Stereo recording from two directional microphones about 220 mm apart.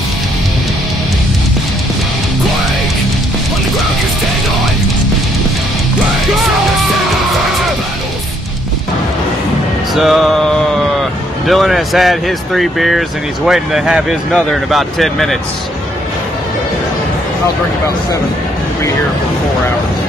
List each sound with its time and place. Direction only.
9.9 s speech: centre (ahead or behind)